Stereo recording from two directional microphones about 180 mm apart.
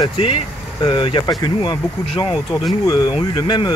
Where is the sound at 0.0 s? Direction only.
30° left (ahead or behind).